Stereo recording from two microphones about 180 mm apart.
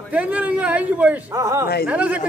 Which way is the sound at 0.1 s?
10° right (ahead or behind).